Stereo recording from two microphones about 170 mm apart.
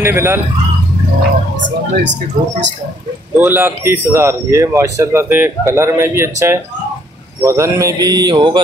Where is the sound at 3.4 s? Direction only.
10° right (ahead or behind).